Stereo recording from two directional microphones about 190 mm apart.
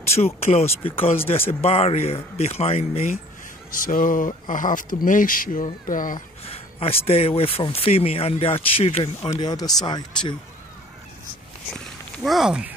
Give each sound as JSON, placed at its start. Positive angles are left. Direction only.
{"t": 0.1, "sound": "speech", "side_deg": 35}
{"t": 3.8, "sound": "speech", "side_deg": 45}
{"t": 6.4, "sound": "speech", "side_deg": 30}
{"t": 9.3, "sound": "speech", "side_deg": 20}
{"t": 11.7, "sound": "speech", "side_deg": 0}